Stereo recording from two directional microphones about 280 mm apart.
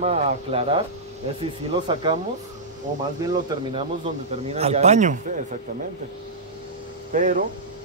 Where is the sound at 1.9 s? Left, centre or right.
Centre.